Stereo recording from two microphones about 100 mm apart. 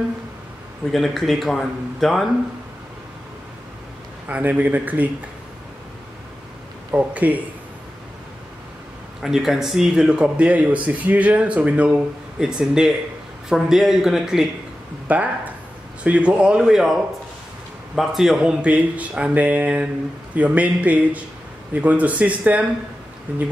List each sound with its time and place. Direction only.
0.9 s speech: centre (ahead or behind)
4.3 s speech: 15° right (ahead or behind)
6.9 s speech: 15° right (ahead or behind)
9.2 s speech: 5° right (ahead or behind)
15.0 s speech: 15° right (ahead or behind)